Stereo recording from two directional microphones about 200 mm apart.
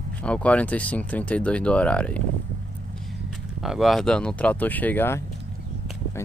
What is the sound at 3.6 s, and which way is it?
Speech, centre (ahead or behind).